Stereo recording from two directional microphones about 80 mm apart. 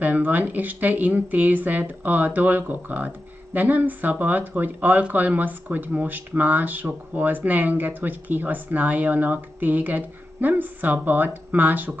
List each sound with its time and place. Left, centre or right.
0.0 s speech: right